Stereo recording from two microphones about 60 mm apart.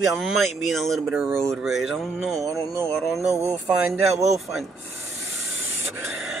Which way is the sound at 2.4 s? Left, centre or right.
Right.